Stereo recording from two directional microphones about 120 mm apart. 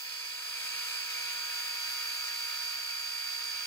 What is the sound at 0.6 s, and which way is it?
Tools, 15° left (ahead or behind).